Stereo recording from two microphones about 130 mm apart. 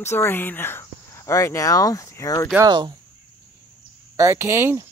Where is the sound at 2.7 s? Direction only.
35° right (ahead or behind).